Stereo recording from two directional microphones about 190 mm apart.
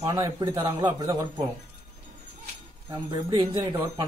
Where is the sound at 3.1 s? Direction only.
20° right (ahead or behind).